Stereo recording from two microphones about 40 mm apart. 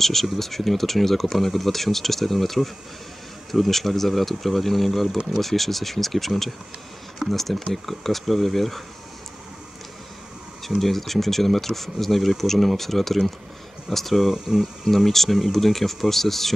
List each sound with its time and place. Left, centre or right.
0.0 s speech: centre
10.8 s speech: centre
14.3 s speech: centre
14.9 s speech: centre